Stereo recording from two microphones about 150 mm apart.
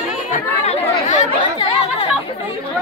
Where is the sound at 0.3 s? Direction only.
55° left (ahead or behind).